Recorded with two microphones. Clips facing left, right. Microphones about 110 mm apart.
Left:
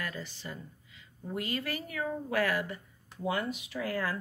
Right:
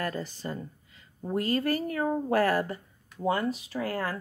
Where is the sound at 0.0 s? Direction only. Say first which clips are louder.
Right 7 dB; 40° right (ahead or behind).